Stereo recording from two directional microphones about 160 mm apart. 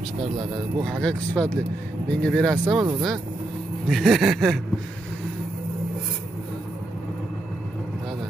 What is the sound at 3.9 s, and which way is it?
Speech, centre (ahead or behind).